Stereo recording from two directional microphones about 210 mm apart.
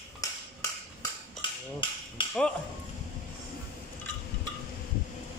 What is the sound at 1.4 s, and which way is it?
Hammer, 25° left (ahead or behind).